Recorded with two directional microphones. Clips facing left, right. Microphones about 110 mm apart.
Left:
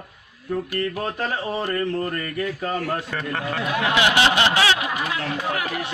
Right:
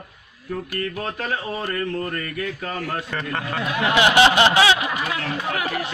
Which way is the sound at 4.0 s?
30° right (ahead or behind).